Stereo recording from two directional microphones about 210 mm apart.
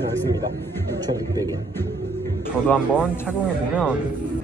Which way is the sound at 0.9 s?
15° right (ahead or behind).